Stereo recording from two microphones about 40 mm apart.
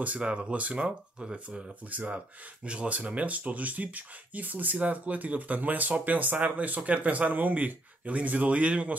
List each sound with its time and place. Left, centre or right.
0.2 s speech: right
0.7 s speech: right
1.9 s speech: right
2.6 s speech: right